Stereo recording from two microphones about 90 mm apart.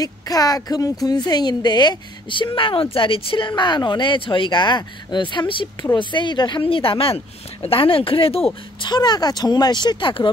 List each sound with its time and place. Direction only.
0.0 s a woman's voice: 45° left (ahead or behind); by 8.5 s 85° left
8.7 s speech: 55° left (ahead or behind)